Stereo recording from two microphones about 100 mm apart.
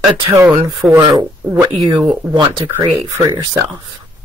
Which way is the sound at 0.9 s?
45° right (ahead or behind).